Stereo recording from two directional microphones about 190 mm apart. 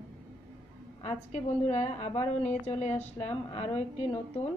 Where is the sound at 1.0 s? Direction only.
35° left (ahead or behind).